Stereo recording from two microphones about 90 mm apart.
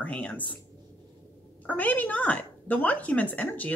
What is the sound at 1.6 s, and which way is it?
Speech, 20° left (ahead or behind).